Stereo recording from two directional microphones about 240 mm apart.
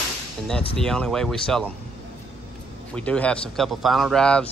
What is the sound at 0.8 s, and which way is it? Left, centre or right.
Speech, centre.